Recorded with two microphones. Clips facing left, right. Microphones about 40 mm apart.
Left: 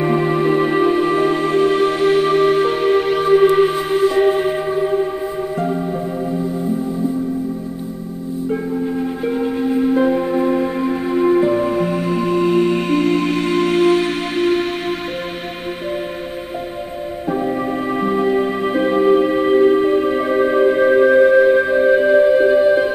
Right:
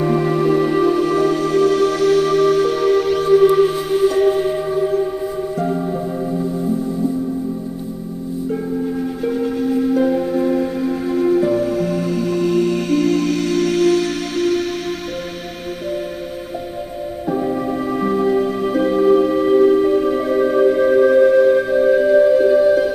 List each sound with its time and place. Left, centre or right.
0.0 s music: left
6.3 s music: centre
9.2 s music: left
17.3 s music: left